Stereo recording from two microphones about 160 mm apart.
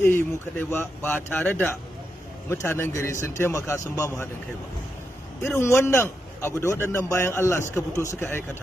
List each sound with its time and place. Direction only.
0.0 s a man's voice: 15° left (ahead or behind)
5.6 s a man's voice: 15° left (ahead or behind)